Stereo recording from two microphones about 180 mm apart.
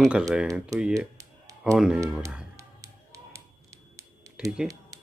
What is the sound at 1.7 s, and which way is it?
Speech, 5° right (ahead or behind).